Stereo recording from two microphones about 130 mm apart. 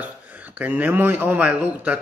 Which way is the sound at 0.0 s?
10° right (ahead or behind).